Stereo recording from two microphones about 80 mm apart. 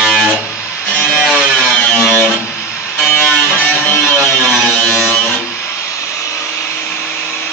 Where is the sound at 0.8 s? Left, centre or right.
Centre.